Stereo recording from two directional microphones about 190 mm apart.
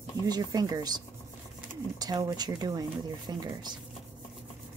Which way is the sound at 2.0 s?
20° right (ahead or behind).